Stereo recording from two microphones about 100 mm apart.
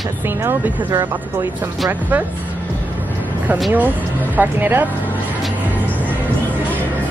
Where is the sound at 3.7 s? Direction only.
15° right (ahead or behind).